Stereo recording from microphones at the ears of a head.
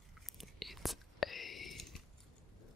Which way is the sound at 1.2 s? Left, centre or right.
Left.